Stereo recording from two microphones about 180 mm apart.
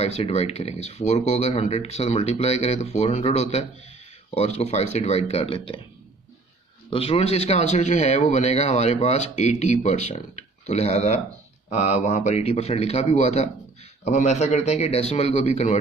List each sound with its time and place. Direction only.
0.0 s speech: 35° left (ahead or behind)
6.9 s speech: 30° left (ahead or behind)